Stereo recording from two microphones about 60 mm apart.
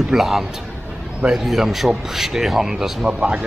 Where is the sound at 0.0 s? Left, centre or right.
Centre.